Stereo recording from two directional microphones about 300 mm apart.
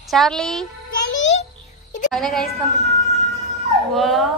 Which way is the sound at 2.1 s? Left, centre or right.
Centre.